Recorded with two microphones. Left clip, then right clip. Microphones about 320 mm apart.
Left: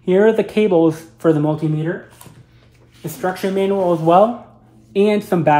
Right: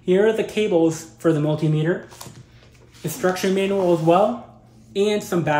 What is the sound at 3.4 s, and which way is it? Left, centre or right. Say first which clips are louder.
Speech: left 5 dB; centre.